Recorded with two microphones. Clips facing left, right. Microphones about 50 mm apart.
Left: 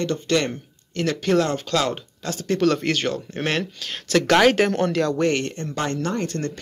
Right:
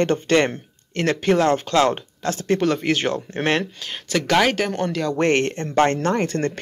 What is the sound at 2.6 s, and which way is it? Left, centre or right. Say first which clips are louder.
Speech: left 2 dB; centre.